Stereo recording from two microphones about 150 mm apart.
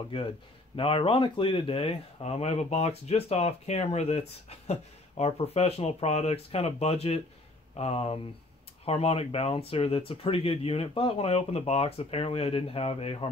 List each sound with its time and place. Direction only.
0.7 s speech: 35° left (ahead or behind)